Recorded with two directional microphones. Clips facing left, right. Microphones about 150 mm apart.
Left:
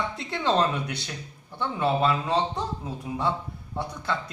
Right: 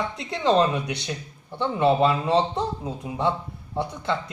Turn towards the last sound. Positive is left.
turn(degrees=-20)  # may be behind; listen again after turning